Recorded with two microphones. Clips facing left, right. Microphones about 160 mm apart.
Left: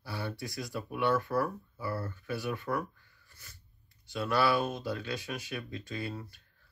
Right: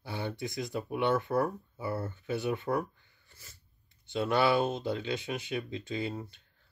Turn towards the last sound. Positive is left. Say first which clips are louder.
# right 3 dB
turn(degrees=-20)  # may be behind; listen again after turning